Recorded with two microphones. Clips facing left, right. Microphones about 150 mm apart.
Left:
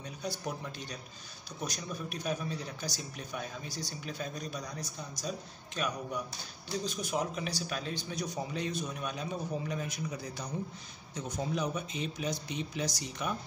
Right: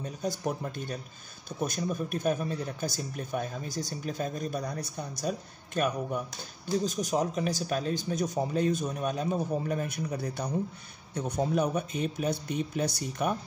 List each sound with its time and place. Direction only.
0.0 s speech: 45° right (ahead or behind)